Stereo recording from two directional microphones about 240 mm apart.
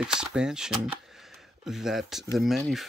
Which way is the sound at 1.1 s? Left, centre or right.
Centre.